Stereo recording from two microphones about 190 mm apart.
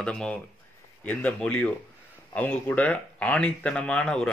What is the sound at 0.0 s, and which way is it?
A man's voice, 5° left (ahead or behind).